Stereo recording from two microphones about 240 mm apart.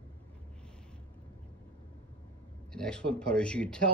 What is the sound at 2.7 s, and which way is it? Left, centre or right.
Speech, centre.